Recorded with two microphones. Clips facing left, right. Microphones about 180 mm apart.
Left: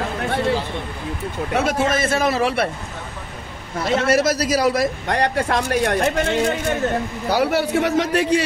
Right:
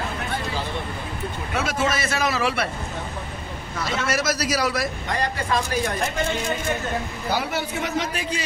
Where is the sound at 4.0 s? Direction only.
55° left (ahead or behind).